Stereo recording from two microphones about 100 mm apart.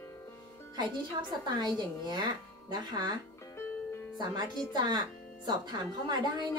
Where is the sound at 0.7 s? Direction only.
50° right (ahead or behind).